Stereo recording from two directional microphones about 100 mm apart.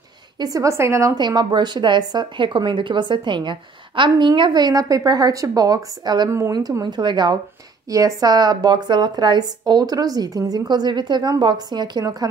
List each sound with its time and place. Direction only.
0.4 s a woman's voice: 35° right (ahead or behind)
1.1 s speech: 45° right (ahead or behind)
7.9 s speech: 35° right (ahead or behind)